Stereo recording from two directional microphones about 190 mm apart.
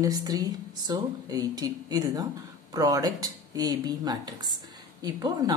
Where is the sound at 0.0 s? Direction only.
20° right (ahead or behind).